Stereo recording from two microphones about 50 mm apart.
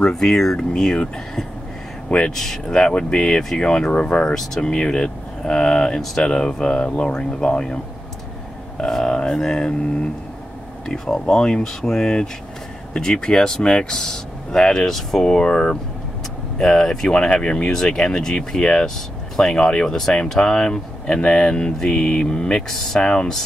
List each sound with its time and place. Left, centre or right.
0.0 s speech: centre
2.0 s speech: centre
2.3 s speech: centre
22.7 s speech: centre
22.9 s speech: centre